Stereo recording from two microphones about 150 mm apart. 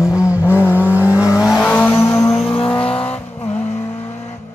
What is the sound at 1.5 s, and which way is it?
Vehicle, 5° left (ahead or behind).